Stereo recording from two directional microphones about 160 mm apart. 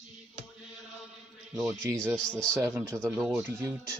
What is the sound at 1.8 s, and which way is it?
Speech, 20° right (ahead or behind).